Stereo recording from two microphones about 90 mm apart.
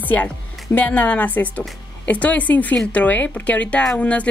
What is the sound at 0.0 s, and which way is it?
A woman's voice, 20° left (ahead or behind).